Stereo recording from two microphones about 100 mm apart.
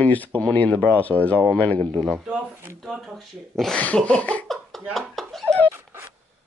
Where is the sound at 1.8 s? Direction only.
50° right (ahead or behind).